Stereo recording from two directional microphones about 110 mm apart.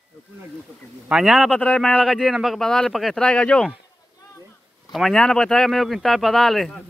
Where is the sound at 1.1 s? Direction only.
5° right (ahead or behind).